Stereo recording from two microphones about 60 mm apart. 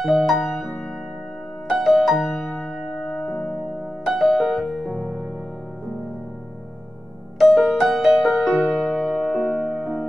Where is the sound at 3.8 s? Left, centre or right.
Right.